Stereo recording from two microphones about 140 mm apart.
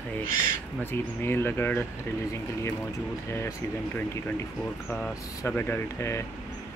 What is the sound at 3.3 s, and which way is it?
Speech, 20° left (ahead or behind).